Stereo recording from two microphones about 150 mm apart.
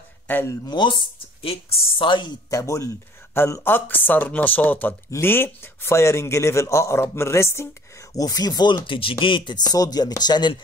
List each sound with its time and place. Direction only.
0.3 s speech: 15° left (ahead or behind)
0.7 s speech: 30° left (ahead or behind)